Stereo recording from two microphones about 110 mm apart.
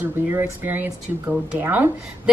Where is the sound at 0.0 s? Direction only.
15° right (ahead or behind).